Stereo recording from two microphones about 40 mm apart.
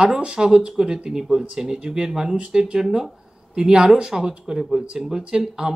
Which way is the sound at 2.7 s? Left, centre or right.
Centre.